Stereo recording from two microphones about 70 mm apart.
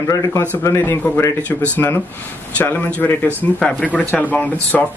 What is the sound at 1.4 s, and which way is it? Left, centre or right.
Speech, centre.